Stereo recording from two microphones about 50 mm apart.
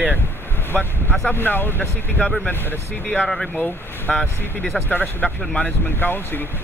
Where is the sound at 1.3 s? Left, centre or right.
Left.